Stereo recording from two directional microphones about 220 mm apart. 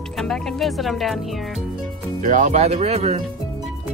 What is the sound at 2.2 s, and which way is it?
Speech, 35° right (ahead or behind).